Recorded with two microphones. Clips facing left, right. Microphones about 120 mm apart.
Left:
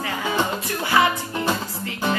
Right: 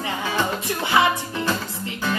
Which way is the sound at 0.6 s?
20° right (ahead or behind).